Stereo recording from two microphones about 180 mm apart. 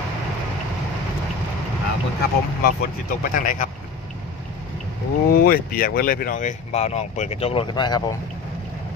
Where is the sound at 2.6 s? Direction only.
50° left (ahead or behind).